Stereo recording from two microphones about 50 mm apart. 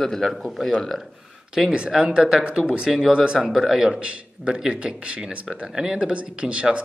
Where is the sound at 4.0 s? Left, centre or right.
Right.